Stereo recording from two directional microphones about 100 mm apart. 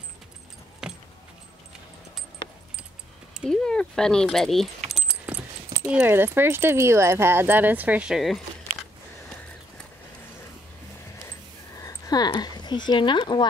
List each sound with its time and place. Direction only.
0.8 s keys jangling: 5° right (ahead or behind)
3.4 s speech: 5° left (ahead or behind)
5.0 s keys jangling: 15° right (ahead or behind)
5.9 s speech: 15° right (ahead or behind)
11.8 s speech: 40° left (ahead or behind)